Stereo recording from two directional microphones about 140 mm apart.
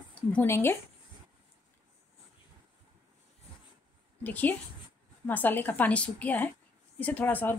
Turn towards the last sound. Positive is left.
turn(degrees=15)  # may be behind; listen again after turning